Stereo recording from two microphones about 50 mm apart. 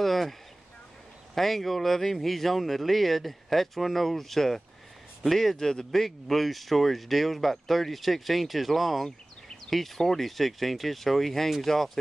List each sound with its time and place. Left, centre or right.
0.0 s speech: centre